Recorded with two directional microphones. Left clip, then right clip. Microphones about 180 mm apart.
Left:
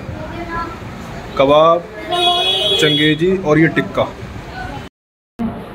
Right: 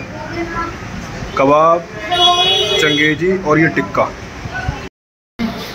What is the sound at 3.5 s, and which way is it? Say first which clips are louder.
Speech: right 1 dB; 15° left (ahead or behind).